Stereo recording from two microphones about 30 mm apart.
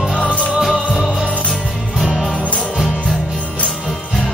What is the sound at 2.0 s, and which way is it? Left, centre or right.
Music, centre.